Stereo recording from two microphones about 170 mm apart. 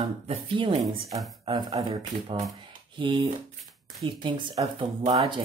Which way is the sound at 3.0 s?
30° right (ahead or behind).